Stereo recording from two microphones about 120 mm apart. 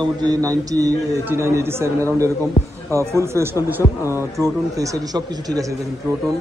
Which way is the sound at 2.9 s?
25° right (ahead or behind).